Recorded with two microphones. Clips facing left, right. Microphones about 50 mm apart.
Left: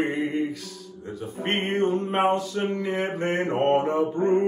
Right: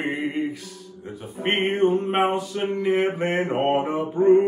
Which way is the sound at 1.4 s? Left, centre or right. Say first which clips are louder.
Right 4 dB; centre.